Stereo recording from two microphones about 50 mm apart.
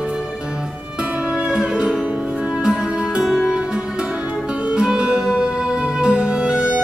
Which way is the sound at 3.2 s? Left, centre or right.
Centre.